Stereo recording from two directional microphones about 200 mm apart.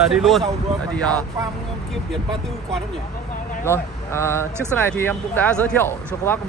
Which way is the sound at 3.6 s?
15° left (ahead or behind).